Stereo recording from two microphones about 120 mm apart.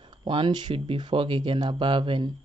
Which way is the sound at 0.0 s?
45° right (ahead or behind).